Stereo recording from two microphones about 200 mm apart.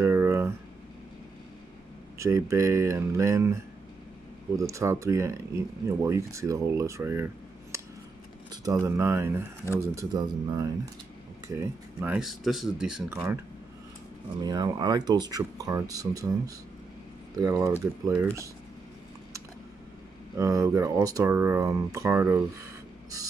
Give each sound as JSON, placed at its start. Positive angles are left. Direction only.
{"t": 0.0, "sound": "a sound", "side_deg": -10}
{"t": 2.1, "sound": "speech", "side_deg": -15}
{"t": 7.7, "sound": "a sound", "side_deg": -15}
{"t": 8.5, "sound": "speech", "side_deg": -15}
{"t": 14.4, "sound": "speech", "side_deg": -20}
{"t": 20.3, "sound": "speech", "side_deg": -15}